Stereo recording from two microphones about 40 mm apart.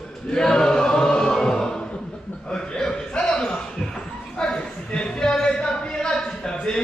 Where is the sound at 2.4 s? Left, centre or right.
Centre.